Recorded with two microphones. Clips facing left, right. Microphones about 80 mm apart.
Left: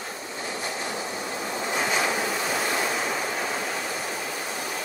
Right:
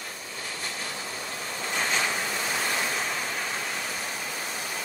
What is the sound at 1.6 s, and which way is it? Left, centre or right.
Waves, centre.